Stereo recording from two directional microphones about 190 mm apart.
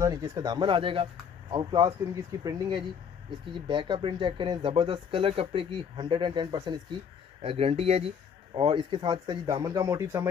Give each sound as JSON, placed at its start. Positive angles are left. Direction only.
{"t": 0.0, "sound": "speech", "side_deg": -20}